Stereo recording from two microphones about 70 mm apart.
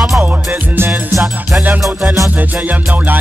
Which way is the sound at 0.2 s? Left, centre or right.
Right.